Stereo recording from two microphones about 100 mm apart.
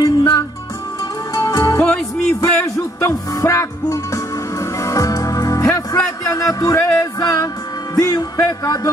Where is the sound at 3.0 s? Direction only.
30° left (ahead or behind).